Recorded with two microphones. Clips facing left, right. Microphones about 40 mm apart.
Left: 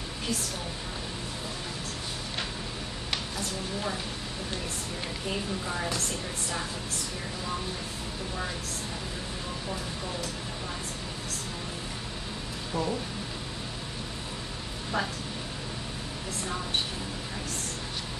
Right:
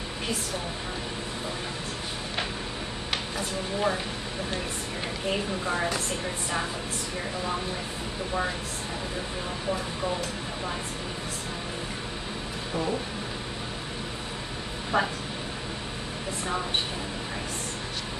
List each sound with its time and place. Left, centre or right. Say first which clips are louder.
3.1 s a sound: right 2 dB; right
5.2 s a woman's voice: right 5 dB; right
14.9 s a woman's voice: right 5 dB; right